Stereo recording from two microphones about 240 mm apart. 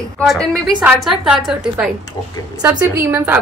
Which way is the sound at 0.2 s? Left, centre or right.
Centre.